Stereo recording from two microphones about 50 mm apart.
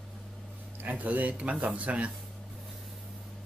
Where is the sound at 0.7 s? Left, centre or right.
Right.